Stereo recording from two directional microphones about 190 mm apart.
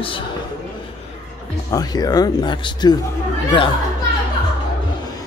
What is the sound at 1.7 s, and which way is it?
Speech, 20° left (ahead or behind).